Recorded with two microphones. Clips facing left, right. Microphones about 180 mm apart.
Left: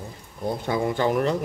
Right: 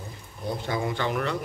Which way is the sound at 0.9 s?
40° left (ahead or behind).